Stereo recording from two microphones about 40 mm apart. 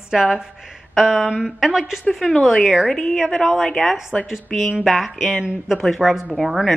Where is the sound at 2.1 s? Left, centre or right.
Centre.